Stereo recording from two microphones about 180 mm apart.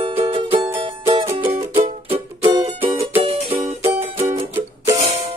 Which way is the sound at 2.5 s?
30° right (ahead or behind).